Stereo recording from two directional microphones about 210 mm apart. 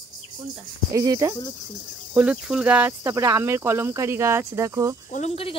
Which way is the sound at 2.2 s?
5° right (ahead or behind).